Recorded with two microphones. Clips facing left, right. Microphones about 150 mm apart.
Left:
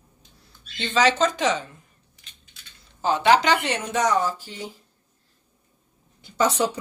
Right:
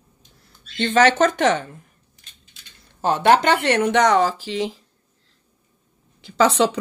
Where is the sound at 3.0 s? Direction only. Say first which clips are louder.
Right 3 dB; 55° right (ahead or behind); by 4.8 s 90° right.